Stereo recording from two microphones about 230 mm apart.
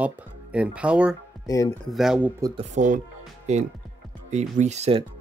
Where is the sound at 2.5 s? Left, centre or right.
Right.